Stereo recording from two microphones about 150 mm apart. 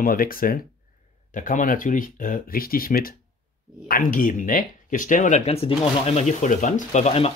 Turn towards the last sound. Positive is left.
turn(degrees=45)  # may be behind; listen again after turning